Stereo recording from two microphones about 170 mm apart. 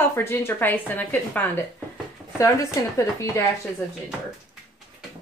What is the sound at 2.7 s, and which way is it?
Speech, 20° left (ahead or behind).